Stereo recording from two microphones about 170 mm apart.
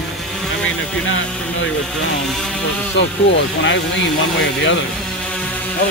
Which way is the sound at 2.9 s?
90° left.